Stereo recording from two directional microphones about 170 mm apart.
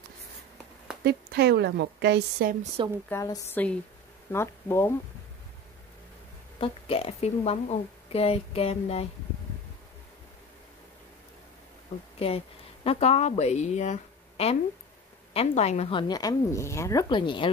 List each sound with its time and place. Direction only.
1.0 s speech: 70° right (ahead or behind)
3.1 s a woman's voice: 20° left (ahead or behind)
6.6 s a woman's voice: 35° left (ahead or behind)
12.2 s speech: 35° left (ahead or behind)